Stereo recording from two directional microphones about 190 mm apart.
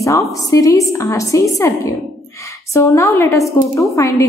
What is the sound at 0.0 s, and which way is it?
A woman's voice, 15° left (ahead or behind).